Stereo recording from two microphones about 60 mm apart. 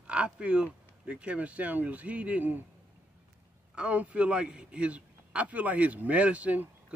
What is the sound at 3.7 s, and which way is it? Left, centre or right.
A man's voice, right.